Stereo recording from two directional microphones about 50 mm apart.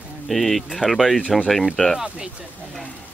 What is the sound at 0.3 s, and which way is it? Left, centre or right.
Speech, centre.